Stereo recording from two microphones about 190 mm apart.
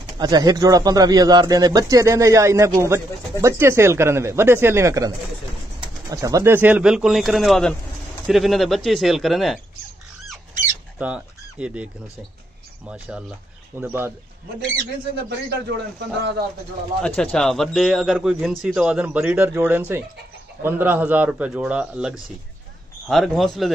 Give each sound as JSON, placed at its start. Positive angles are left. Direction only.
{"t": 0.2, "sound": "a man's voice", "side_deg": -20}
{"t": 11.0, "sound": "a man's voice", "side_deg": -5}
{"t": 15.2, "sound": "a man's voice", "side_deg": -60}
{"t": 17.0, "sound": "a man's voice", "side_deg": 5}